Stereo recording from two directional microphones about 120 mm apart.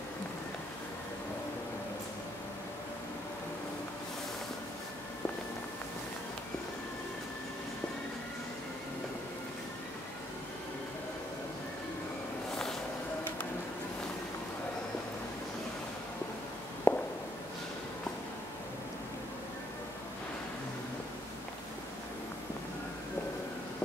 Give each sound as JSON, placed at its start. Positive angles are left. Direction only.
{"t": 16.9, "sound": "walk", "side_deg": 20}